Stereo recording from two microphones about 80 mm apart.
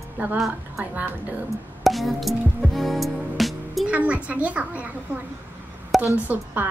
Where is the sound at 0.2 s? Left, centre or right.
Right.